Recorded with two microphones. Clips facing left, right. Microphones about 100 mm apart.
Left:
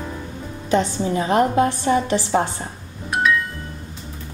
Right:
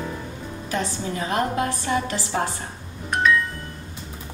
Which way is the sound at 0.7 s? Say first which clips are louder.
Left 8 dB; 25° left (ahead or behind).